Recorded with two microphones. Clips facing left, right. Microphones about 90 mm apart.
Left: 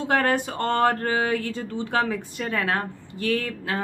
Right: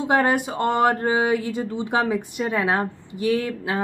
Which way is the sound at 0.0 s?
15° right (ahead or behind).